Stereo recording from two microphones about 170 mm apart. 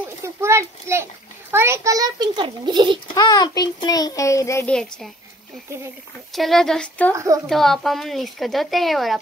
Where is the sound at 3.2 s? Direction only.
25° left (ahead or behind).